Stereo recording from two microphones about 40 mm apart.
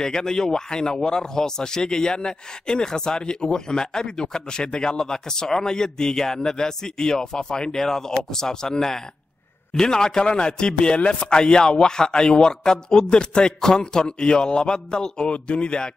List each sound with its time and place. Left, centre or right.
0.0 s a man's voice: centre